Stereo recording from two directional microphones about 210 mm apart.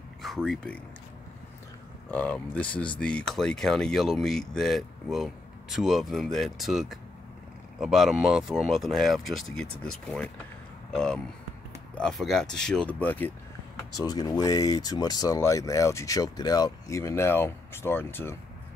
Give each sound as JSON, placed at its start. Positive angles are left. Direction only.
{"t": 0.2, "sound": "speech", "side_deg": 0}
{"t": 2.0, "sound": "speech", "side_deg": 5}
{"t": 13.9, "sound": "speech", "side_deg": 20}